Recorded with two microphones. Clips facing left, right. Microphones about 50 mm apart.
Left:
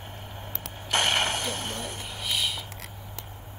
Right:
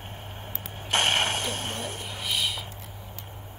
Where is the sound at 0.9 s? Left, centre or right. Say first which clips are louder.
Right 1 dB; right.